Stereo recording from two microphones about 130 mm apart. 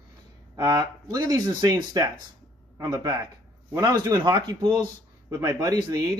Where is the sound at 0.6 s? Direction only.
30° right (ahead or behind).